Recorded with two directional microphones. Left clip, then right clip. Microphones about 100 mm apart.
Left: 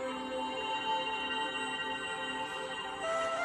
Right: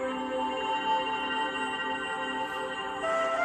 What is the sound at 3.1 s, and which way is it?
Music, 35° right (ahead or behind).